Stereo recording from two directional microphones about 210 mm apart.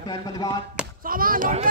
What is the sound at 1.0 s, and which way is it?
Speech, 40° right (ahead or behind).